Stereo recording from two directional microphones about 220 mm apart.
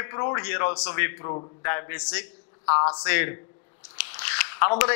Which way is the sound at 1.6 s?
15° left (ahead or behind).